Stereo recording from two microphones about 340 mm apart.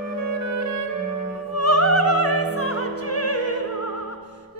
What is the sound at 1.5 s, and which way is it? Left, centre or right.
Opera, left.